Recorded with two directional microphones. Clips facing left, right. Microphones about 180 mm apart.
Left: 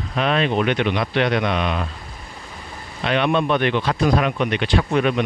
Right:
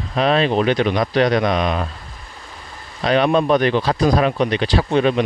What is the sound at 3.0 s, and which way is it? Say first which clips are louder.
Speech: right 4 dB; 35° right (ahead or behind).